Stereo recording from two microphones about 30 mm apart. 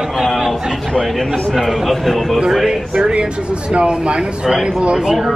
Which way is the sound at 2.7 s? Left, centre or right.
Right.